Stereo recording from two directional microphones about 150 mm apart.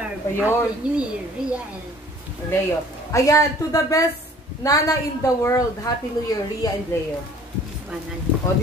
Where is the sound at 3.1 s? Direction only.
20° left (ahead or behind).